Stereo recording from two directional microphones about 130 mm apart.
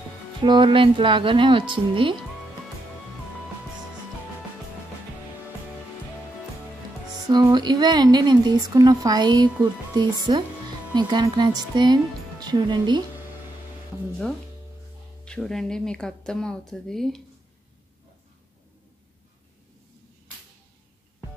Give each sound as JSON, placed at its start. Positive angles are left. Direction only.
{"t": 0.4, "sound": "speech", "side_deg": -40}
{"t": 7.2, "sound": "speech", "side_deg": -35}
{"t": 15.2, "sound": "speech", "side_deg": 5}